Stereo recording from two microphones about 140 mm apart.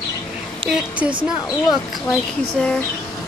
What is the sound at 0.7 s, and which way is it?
A woman's voice, 5° right (ahead or behind).